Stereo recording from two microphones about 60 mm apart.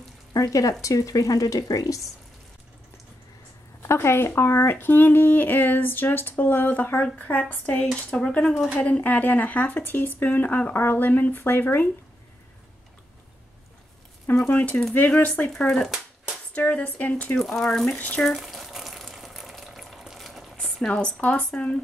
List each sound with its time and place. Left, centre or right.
0.3 s speech: left
3.8 s speech: left
14.5 s speech: left
16.5 s speech: left
17.4 s speech: centre
17.8 s speech: left
18.3 s water: centre
20.5 s speech: centre